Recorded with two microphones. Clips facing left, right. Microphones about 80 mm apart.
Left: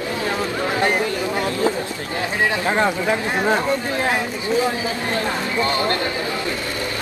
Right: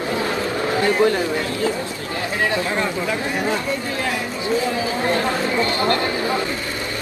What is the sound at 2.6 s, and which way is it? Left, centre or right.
Speech, left.